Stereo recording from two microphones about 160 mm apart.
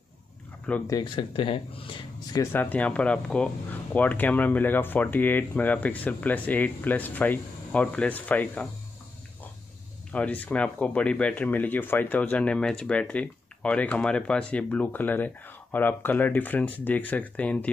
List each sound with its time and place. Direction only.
0.8 s speech: 25° left (ahead or behind)
2.5 s speech: 10° left (ahead or behind)
10.1 s speech: 10° left (ahead or behind)